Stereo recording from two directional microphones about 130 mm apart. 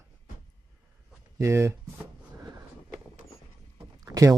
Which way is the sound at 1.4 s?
20° right (ahead or behind).